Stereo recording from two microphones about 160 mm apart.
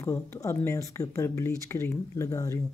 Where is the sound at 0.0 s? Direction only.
20° left (ahead or behind).